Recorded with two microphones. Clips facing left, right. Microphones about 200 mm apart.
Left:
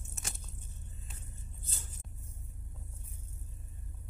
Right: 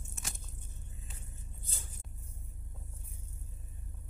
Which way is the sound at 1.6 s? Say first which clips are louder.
Even; 15° right (ahead or behind).